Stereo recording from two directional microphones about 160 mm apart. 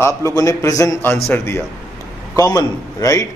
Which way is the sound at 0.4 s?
20° left (ahead or behind).